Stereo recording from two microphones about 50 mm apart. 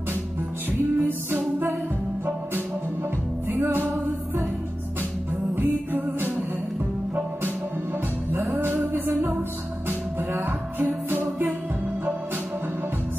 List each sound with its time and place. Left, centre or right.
0.7 s music: right
3.4 s music: right
8.5 s music: right
10.3 s music: right